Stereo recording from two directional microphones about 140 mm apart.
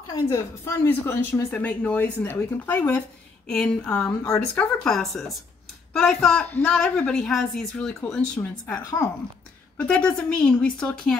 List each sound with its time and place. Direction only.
0.2 s speech: 20° left (ahead or behind)